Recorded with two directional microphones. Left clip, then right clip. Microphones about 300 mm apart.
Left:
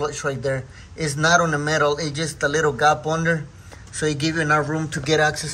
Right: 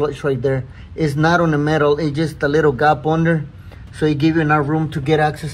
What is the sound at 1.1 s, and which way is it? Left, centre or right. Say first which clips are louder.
A man's voice: right 1 dB; right.